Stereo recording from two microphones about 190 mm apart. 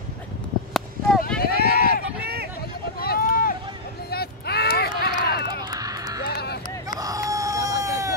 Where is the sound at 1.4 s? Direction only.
55° left (ahead or behind).